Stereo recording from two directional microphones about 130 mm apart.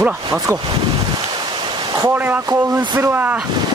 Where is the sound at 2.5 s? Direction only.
20° right (ahead or behind).